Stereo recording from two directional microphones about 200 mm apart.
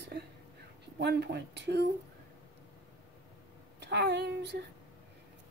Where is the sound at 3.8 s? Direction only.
60° right (ahead or behind).